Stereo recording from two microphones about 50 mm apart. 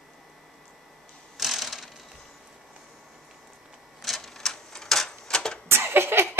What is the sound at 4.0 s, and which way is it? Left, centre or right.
Typewriter, centre.